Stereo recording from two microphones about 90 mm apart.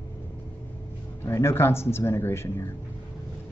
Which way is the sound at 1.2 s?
30° left (ahead or behind).